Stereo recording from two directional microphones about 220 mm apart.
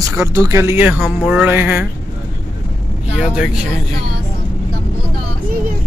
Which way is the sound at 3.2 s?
5° right (ahead or behind).